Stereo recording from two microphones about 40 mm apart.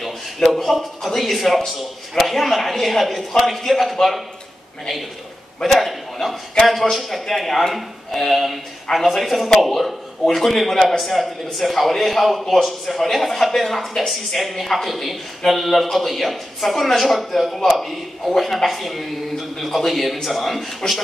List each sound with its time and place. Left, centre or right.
0.0 s a man's voice: centre
5.6 s a man's voice: centre
20.8 s a man's voice: left